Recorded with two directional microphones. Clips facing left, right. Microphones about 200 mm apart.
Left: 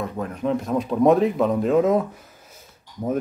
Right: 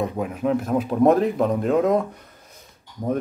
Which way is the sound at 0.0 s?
10° right (ahead or behind).